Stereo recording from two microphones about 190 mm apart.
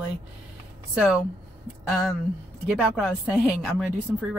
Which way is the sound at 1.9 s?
Centre (ahead or behind).